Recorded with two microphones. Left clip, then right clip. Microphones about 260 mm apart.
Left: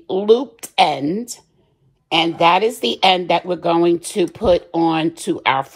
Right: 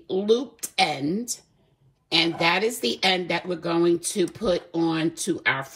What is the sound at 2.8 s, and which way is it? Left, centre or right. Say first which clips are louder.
A woman's voice: left 8 dB; centre.